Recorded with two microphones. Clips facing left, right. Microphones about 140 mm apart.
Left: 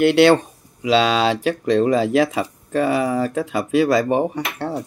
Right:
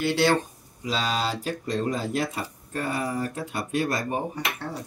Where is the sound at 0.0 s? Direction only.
65° left (ahead or behind).